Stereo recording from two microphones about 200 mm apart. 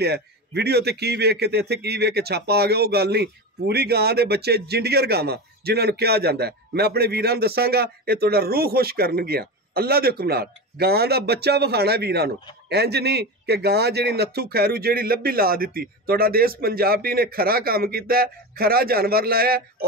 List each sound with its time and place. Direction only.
0.0 s a man's voice: 55° right (ahead or behind)